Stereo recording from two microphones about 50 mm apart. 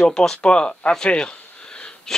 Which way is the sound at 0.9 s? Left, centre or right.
Centre.